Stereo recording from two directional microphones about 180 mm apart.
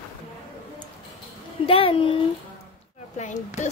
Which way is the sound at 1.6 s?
30° left (ahead or behind).